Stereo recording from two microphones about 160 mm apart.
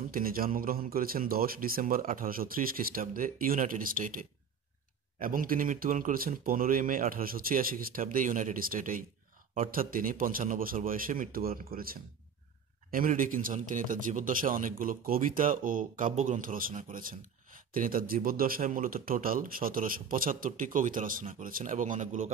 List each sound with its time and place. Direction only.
0.1 s speech: 65° right (ahead or behind)